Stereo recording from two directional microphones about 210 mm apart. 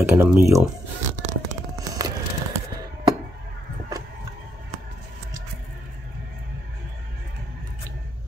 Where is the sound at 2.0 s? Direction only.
15° right (ahead or behind).